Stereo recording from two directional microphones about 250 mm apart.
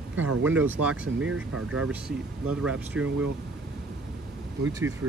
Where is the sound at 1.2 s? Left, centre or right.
Right.